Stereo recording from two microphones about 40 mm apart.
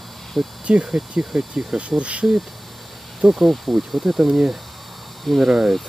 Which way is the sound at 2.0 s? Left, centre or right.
Right.